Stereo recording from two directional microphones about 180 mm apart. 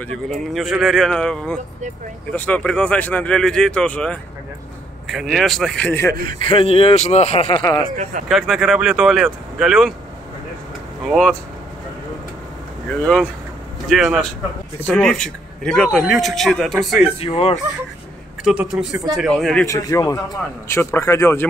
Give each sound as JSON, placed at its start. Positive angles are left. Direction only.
{"t": 0.5, "sound": "a man's voice", "side_deg": 0}
{"t": 6.4, "sound": "speech", "side_deg": 30}
{"t": 7.6, "sound": "speech", "side_deg": 20}
{"t": 7.9, "sound": "speech", "side_deg": -45}
{"t": 8.3, "sound": "a man's voice", "side_deg": 0}
{"t": 11.1, "sound": "a man's voice", "side_deg": 0}
{"t": 13.0, "sound": "a man's voice", "side_deg": 5}
{"t": 18.4, "sound": "a man's voice", "side_deg": -5}
{"t": 19.7, "sound": "speech", "side_deg": 20}